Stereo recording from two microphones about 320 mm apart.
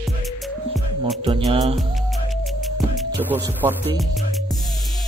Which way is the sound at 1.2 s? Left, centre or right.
Centre.